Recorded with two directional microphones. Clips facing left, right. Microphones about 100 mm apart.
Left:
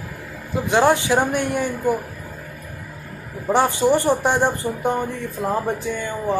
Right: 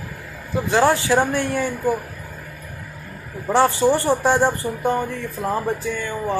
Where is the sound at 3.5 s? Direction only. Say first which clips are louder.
Even; 15° left (ahead or behind).